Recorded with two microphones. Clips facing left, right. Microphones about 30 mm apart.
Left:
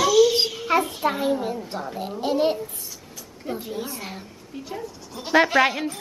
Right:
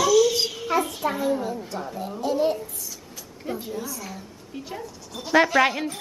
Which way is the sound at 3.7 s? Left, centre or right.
Left.